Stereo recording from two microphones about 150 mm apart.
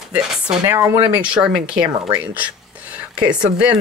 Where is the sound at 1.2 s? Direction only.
5° right (ahead or behind).